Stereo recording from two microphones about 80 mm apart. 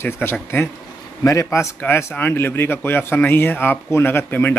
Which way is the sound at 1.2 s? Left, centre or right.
Left.